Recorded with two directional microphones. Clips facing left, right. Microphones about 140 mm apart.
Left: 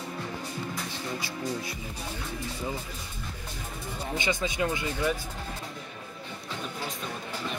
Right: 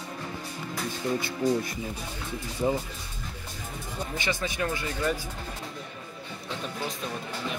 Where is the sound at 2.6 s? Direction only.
35° right (ahead or behind).